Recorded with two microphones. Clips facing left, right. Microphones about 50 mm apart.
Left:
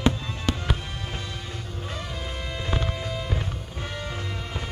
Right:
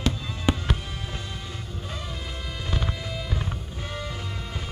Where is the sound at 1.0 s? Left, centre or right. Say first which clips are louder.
Left 1 dB; left.